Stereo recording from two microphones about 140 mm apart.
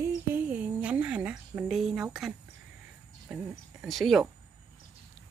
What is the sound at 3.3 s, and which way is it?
Speech, 5° right (ahead or behind).